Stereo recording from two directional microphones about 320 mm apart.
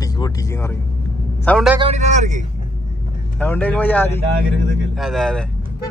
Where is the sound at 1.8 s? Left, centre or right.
Right.